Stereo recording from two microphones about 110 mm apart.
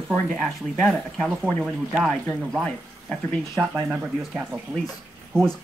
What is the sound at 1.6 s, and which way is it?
Speech, 5° right (ahead or behind).